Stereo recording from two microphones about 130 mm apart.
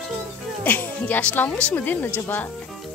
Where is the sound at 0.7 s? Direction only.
10° left (ahead or behind).